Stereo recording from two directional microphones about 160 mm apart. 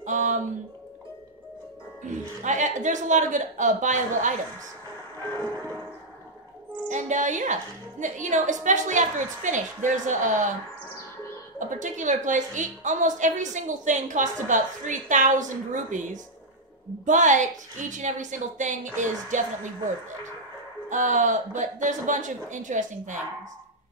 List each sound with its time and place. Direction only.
0.0 s music: 50° right (ahead or behind)
2.0 s a woman's voice: 50° right (ahead or behind)
6.9 s a woman's voice: 50° right (ahead or behind)
11.7 s a woman's voice: 50° right (ahead or behind)
20.9 s a woman's voice: 50° right (ahead or behind)